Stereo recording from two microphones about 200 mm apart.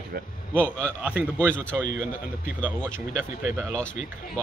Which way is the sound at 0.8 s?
5° right (ahead or behind).